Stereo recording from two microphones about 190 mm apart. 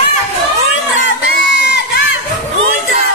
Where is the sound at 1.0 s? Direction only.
65° left (ahead or behind).